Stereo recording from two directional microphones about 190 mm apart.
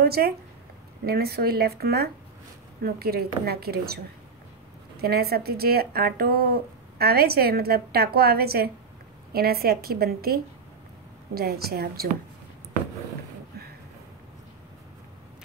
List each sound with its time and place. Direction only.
0.0 s a woman's voice: 55° right (ahead or behind)